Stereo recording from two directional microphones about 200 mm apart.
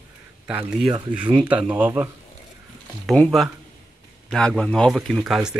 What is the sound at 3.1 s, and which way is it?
A man's voice, centre (ahead or behind).